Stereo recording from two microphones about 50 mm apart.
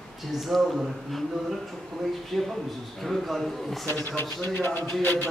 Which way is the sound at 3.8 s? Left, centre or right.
Left.